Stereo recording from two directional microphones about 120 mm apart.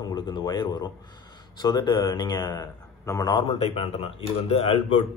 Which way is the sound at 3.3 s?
40° left (ahead or behind).